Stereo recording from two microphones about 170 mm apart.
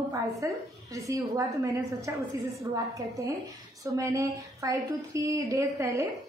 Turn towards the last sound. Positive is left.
turn(degrees=-20)  # may be behind; listen again after turning